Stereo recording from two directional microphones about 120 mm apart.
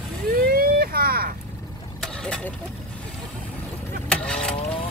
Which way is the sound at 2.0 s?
10° left (ahead or behind).